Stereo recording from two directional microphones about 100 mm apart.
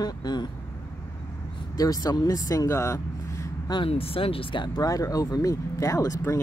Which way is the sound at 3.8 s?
65° left (ahead or behind).